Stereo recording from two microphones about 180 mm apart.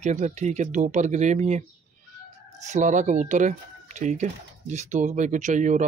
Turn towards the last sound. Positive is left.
turn(degrees=-45)  # may be behind; listen again after turning